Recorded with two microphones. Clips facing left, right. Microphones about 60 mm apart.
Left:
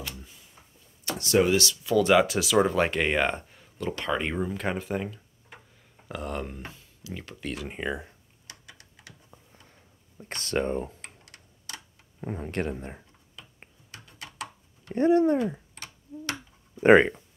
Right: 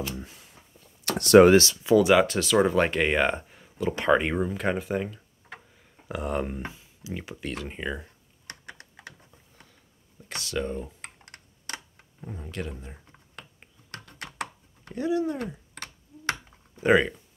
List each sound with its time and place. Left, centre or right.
0.2 s a sound: right
1.5 s speech: right
2.0 s speech: centre
7.4 s speech: centre
8.5 s computer keyboard: right
10.1 s speech: left
11.0 s computer keyboard: right
12.2 s speech: left
13.4 s typing: right
13.9 s computer keyboard: right
15.0 s speech: left
15.8 s finger snapping: right
16.8 s speech: left